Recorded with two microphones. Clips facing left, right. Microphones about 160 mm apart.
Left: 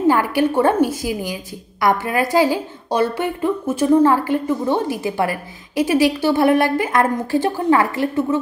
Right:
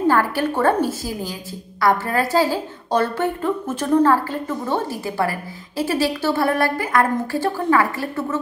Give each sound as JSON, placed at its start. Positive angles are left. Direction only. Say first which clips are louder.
{"t": 0.1, "sound": "a woman's voice", "louder": "left 3 dB", "side_deg": 15}